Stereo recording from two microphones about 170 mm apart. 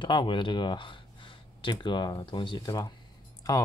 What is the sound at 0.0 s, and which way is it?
Speech, 30° left (ahead or behind).